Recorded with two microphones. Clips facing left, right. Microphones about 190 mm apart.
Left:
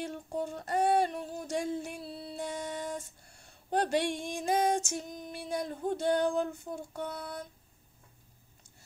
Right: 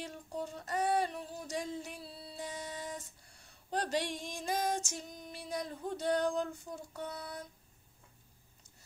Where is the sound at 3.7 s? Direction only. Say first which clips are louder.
Left 6 dB; 55° left (ahead or behind).